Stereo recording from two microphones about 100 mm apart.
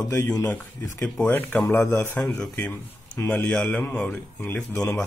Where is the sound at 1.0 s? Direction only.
15° left (ahead or behind).